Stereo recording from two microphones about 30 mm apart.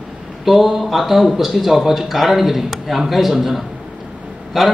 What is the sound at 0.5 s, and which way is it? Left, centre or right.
A man's voice, centre.